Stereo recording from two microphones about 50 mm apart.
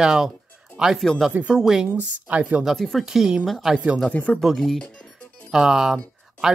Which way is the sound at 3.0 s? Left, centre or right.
Centre.